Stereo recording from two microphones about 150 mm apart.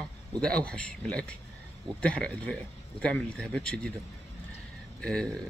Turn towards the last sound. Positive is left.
turn(degrees=5)  # may be behind; listen again after turning